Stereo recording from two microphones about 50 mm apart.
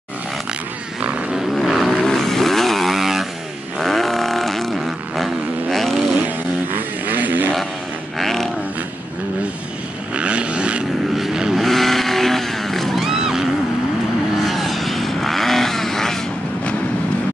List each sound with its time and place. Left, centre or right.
1.7 s vehicle: centre
3.8 s a sound: centre
7.1 s music: right
8.2 s a sound: centre
10.1 s vehicle: right
11.1 s vehicle: centre
11.6 s vehicle: centre
12.9 s a sound: centre
14.4 s vehicle: centre